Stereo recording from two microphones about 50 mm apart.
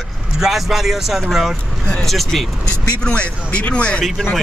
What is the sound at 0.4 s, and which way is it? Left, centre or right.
A man's voice, centre.